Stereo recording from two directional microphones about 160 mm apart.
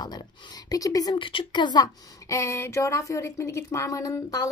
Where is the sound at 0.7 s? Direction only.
20° left (ahead or behind).